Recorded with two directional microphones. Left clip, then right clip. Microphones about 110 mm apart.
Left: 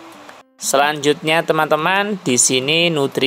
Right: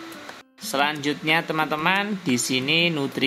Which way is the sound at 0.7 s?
45° left (ahead or behind).